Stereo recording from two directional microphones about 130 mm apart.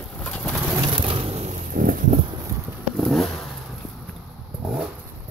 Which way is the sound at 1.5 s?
85° right.